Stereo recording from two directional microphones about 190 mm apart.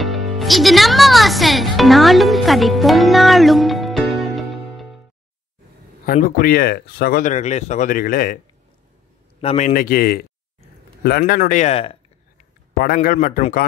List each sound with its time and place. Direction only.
0.0 s speech: centre (ahead or behind)
6.0 s speech: 50° left (ahead or behind)
7.3 s a man's voice: 35° left (ahead or behind)
9.4 s a man's voice: 30° left (ahead or behind)
9.7 s speech: 50° left (ahead or behind); by 12.0 s 30° left (ahead or behind)
12.7 s speech: 50° left (ahead or behind)